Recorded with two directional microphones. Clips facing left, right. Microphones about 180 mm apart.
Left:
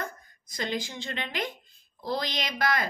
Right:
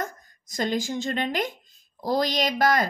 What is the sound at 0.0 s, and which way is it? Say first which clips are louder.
A child's voice: right 4 dB; 45° right (ahead or behind).